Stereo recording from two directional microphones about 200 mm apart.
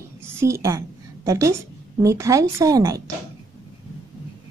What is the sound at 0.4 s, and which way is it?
A woman's voice, 15° right (ahead or behind).